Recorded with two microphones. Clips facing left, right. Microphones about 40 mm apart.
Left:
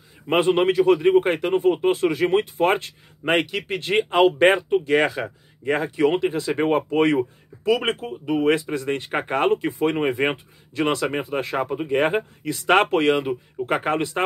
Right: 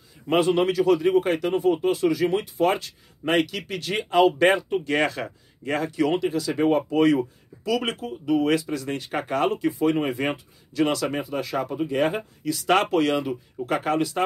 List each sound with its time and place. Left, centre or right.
0.3 s speech: left